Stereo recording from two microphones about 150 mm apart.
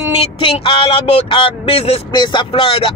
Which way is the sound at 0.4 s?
35° left (ahead or behind).